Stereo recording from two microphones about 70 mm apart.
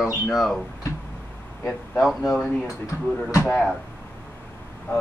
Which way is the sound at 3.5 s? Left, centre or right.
Centre.